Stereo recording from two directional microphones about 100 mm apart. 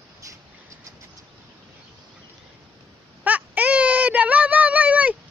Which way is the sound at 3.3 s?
15° right (ahead or behind).